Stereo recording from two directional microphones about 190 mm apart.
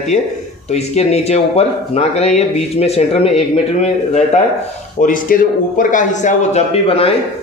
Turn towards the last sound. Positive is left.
turn(degrees=30)  # may be behind; listen again after turning